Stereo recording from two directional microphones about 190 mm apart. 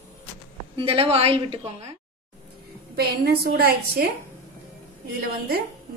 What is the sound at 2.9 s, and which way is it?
A woman's voice, 55° right (ahead or behind).